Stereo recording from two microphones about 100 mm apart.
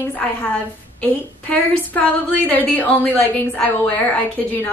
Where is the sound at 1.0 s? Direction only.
15° left (ahead or behind).